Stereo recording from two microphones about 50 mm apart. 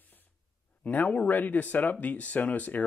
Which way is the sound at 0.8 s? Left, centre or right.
Left.